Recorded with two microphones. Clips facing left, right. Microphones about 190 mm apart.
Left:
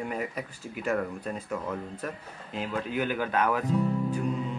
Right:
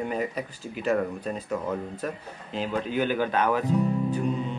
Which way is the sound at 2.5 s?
30° right (ahead or behind).